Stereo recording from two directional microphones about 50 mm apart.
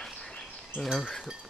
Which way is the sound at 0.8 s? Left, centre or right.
Centre.